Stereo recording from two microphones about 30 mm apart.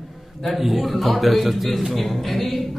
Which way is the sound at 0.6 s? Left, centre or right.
Centre.